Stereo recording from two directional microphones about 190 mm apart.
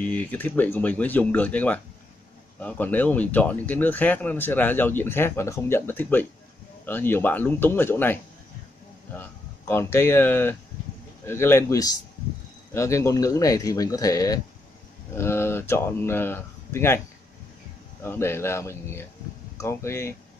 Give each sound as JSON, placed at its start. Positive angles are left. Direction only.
{"t": 0.0, "sound": "speech", "side_deg": 10}
{"t": 18.0, "sound": "speech", "side_deg": 10}